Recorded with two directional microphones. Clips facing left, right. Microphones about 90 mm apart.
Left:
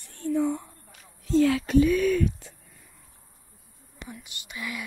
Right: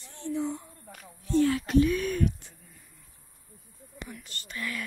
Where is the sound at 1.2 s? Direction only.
90° left.